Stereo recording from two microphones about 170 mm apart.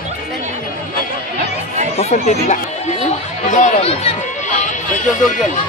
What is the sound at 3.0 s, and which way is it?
Chatter, 40° left (ahead or behind).